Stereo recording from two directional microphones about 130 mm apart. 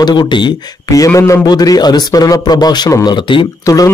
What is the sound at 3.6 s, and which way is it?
Speech, 25° left (ahead or behind).